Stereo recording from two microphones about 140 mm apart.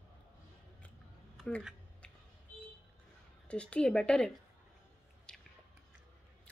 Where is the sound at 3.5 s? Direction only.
10° left (ahead or behind).